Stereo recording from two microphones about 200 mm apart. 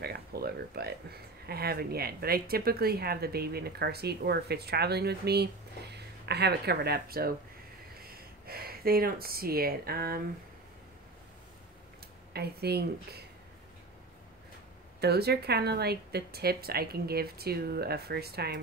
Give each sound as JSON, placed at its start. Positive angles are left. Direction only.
{"t": 0.0, "sound": "speech", "side_deg": -50}
{"t": 12.3, "sound": "speech", "side_deg": -50}
{"t": 15.0, "sound": "speech", "side_deg": -55}